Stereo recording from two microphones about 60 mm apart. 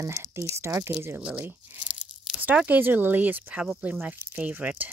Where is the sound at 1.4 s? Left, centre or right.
Right.